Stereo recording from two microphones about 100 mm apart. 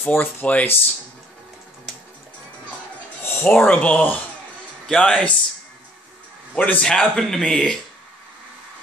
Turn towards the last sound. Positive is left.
turn(degrees=5)  # may be behind; listen again after turning